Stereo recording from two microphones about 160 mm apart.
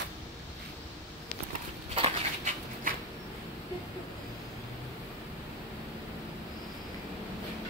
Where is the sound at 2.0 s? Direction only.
50° right (ahead or behind).